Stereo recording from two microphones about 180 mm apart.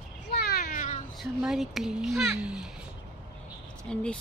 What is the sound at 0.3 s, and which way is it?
Cat, 60° left (ahead or behind).